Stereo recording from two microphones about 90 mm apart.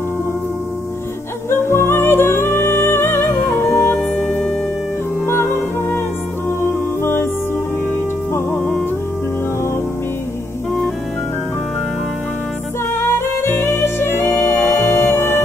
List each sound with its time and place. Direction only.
1.5 s music: 25° left (ahead or behind)
5.2 s music: 25° left (ahead or behind)
7.0 s music: 25° left (ahead or behind)
8.5 s music: 15° left (ahead or behind)
12.9 s music: 30° left (ahead or behind)